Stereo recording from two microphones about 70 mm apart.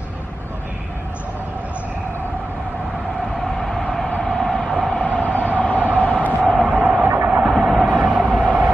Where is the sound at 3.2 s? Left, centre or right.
Centre.